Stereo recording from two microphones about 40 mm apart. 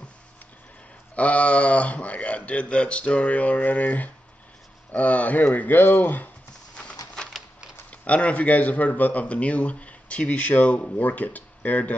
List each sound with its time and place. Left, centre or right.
1.1 s speech: left
5.8 s speech: left
6.8 s a sound: left
7.9 s speech: left